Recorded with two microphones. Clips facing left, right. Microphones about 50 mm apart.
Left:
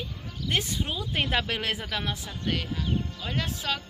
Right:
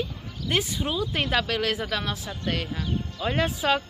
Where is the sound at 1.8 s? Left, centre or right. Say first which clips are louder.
Right 3 dB; centre.